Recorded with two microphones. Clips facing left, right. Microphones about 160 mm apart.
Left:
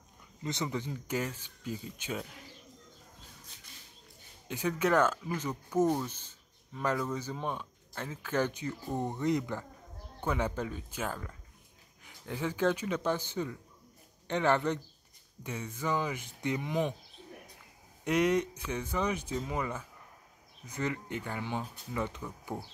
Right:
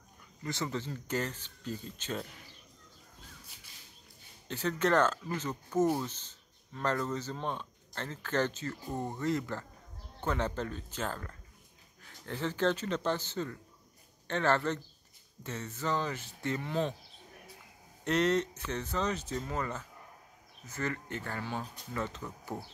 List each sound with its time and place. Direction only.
0.4 s speech: 20° left (ahead or behind)
4.5 s speech: 10° left (ahead or behind)
18.0 s speech: 10° left (ahead or behind)